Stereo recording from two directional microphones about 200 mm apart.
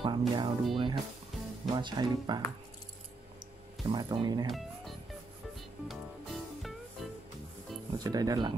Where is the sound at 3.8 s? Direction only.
25° right (ahead or behind).